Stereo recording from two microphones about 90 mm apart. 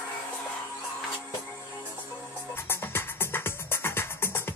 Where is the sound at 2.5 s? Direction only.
25° left (ahead or behind).